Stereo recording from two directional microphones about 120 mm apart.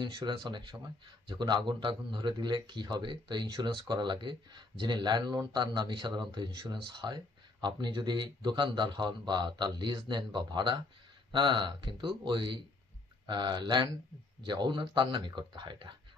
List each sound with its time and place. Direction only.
0.0 s speech: 40° right (ahead or behind)